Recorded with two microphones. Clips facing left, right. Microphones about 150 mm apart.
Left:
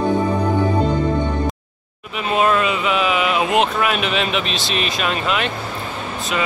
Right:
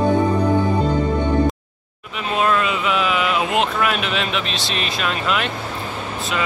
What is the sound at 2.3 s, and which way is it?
Speech, 5° left (ahead or behind).